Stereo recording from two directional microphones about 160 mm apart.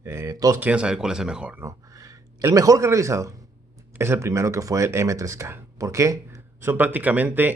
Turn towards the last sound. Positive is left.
turn(degrees=-10)  # may be behind; listen again after turning